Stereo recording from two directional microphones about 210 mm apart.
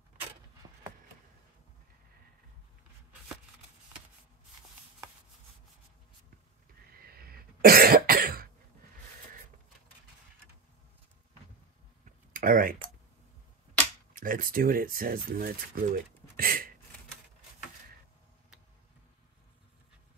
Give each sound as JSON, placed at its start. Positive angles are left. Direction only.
{"t": 0.6, "sound": "a sound", "side_deg": -30}
{"t": 6.9, "sound": "cough", "side_deg": -45}
{"t": 12.3, "sound": "clicking", "side_deg": -40}
{"t": 14.1, "sound": "speech", "side_deg": -40}